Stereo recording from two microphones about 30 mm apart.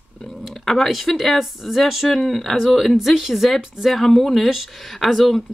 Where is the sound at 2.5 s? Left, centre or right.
Centre.